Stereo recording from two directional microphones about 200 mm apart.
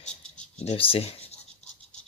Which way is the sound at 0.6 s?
30° left (ahead or behind).